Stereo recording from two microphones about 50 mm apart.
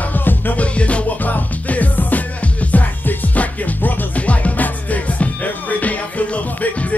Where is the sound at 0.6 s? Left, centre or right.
Left.